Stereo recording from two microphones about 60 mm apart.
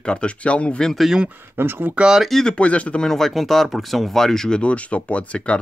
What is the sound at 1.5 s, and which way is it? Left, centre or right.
Speech, right.